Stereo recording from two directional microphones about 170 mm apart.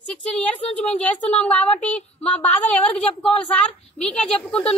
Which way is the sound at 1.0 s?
5° left (ahead or behind).